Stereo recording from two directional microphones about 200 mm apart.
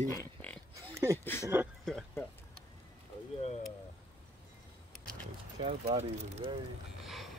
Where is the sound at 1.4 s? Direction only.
10° right (ahead or behind).